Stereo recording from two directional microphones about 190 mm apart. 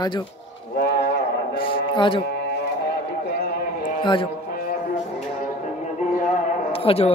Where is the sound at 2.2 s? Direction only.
60° left (ahead or behind).